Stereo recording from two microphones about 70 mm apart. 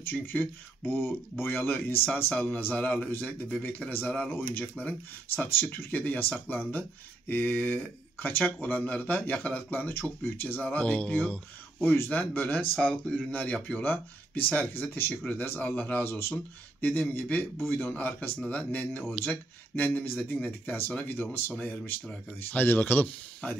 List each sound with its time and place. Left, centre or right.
0.1 s speech: left
11.9 s speech: left
12.2 s speech: left
13.0 s speech: centre
13.3 s speech: left
16.8 s speech: left